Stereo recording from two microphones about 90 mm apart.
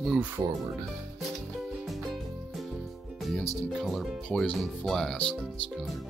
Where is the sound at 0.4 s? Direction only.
35° right (ahead or behind).